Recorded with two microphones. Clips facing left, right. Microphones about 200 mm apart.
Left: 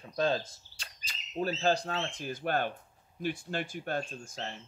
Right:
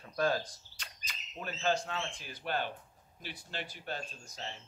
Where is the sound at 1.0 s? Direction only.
35° left (ahead or behind); by 4.5 s 50° left (ahead or behind).